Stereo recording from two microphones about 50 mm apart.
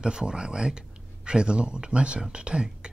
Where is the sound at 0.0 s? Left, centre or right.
Centre.